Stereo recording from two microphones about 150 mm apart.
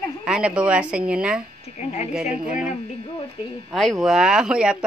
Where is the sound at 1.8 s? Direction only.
50° left (ahead or behind).